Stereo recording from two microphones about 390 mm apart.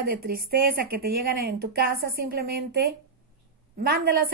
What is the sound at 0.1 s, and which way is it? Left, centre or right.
Speech, right.